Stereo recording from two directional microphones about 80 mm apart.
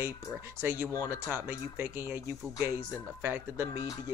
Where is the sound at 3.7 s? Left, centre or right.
Left.